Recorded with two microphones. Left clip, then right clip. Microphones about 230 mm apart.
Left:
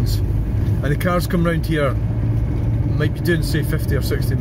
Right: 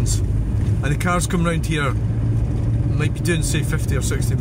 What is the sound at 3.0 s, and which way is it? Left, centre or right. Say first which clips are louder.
Speech: left 3 dB; centre.